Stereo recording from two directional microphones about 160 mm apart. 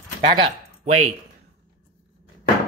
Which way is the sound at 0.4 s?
45° right (ahead or behind).